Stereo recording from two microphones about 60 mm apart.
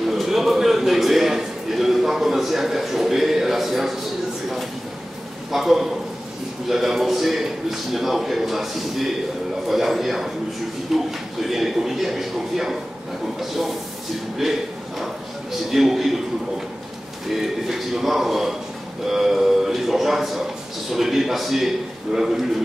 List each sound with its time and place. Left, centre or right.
0.1 s a sound: centre
5.5 s a man's voice: centre
15.7 s a man's voice: centre
17.6 s a man's voice: centre
19.0 s a sound: centre
20.9 s a man's voice: centre